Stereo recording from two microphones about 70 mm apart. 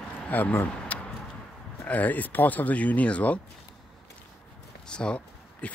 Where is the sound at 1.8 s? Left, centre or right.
Left.